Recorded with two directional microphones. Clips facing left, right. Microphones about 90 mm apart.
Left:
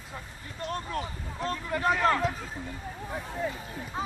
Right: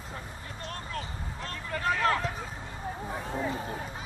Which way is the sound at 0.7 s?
25° left (ahead or behind).